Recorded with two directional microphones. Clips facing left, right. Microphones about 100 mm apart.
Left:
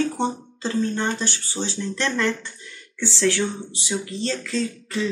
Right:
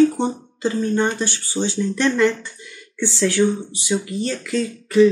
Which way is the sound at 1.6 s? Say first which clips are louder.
Right 6 dB; 10° left (ahead or behind).